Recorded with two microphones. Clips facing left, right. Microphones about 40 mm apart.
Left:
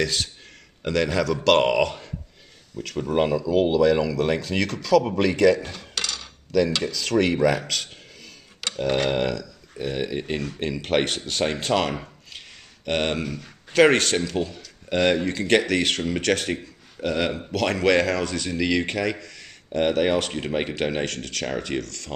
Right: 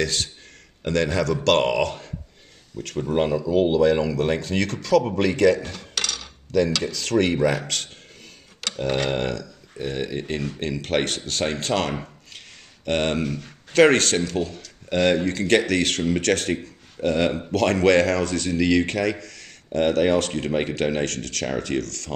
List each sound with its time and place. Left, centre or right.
0.0 s a man's voice: centre
3.3 s speech: centre
5.6 s cutlery: centre
6.8 s speech: centre
9.1 s a sound: centre
9.9 s a man's voice: centre
17.0 s a man's voice: centre